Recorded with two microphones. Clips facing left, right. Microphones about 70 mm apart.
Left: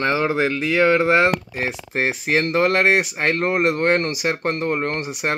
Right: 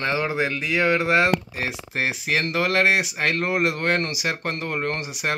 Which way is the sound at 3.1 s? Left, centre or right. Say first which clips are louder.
Left 3 dB; left.